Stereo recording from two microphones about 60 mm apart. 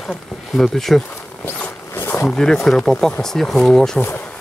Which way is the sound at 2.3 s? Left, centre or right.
Centre.